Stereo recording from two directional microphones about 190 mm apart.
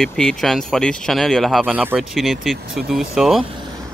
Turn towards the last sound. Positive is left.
turn(degrees=0)  # may be behind; listen again after turning